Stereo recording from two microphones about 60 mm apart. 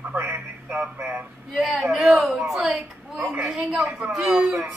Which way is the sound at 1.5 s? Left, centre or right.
Centre.